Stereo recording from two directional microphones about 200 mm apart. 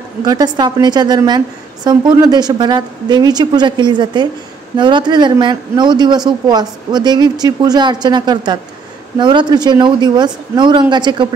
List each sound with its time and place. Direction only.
0.2 s speech: 20° right (ahead or behind)